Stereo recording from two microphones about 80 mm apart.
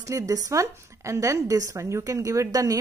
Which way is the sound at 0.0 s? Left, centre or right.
Right.